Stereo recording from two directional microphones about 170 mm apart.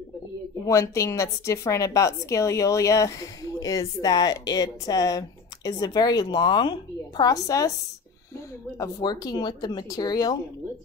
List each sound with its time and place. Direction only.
0.7 s a woman's voice: 20° left (ahead or behind)
8.7 s a woman's voice: 20° left (ahead or behind)